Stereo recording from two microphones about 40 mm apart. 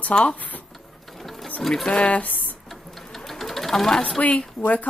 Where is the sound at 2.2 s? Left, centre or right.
Left.